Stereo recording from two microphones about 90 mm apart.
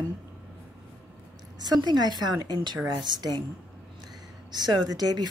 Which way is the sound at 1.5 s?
50° right (ahead or behind).